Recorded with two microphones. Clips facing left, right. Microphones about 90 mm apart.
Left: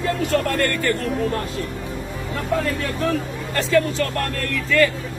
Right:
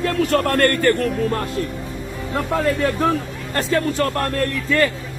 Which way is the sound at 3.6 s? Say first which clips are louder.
Even; 45° right (ahead or behind).